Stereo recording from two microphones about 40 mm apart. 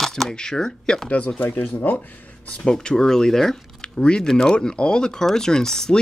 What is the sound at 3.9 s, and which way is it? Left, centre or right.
Speech, left.